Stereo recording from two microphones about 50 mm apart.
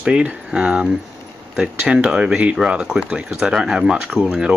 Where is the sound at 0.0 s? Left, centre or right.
Centre.